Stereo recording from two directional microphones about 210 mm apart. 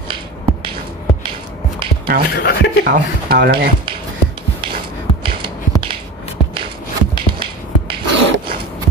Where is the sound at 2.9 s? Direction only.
45° right (ahead or behind).